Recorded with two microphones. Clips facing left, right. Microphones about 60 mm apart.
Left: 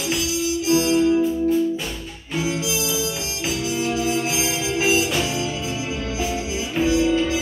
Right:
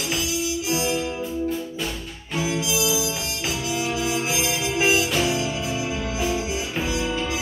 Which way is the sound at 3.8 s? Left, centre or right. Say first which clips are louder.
Left 3 dB; centre.